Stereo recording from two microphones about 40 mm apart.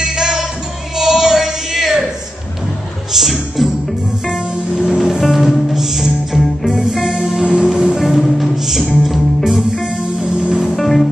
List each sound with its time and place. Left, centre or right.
0.0 s music: centre
0.9 s male singing: centre
3.1 s music: centre
4.8 s music: centre
5.2 s music: centre
7.2 s music: centre
8.2 s music: centre
10.8 s music: centre